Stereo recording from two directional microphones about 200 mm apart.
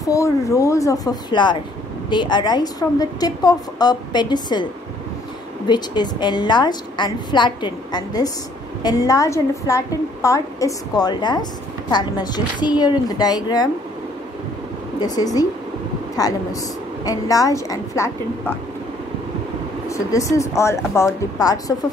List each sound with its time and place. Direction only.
0.0 s a woman's voice: 15° left (ahead or behind)
5.7 s a woman's voice: 20° left (ahead or behind)
15.0 s a woman's voice: 20° left (ahead or behind)
19.9 s a woman's voice: 15° left (ahead or behind)